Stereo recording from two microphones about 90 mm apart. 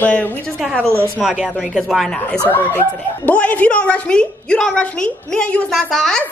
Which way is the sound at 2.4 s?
20° left (ahead or behind).